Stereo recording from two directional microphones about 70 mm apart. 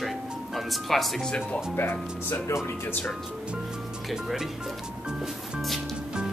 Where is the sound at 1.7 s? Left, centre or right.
Left.